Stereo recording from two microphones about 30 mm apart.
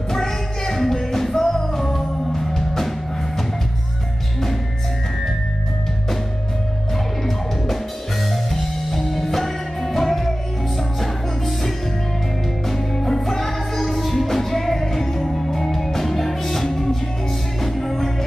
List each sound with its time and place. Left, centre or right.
0.1 s music: centre
7.2 s music: centre
12.9 s music: centre
13.2 s music: centre